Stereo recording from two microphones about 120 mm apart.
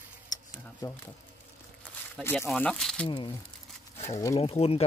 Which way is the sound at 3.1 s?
40° left (ahead or behind).